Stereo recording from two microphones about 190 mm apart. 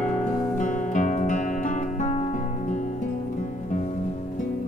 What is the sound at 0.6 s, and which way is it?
Music, 40° left (ahead or behind).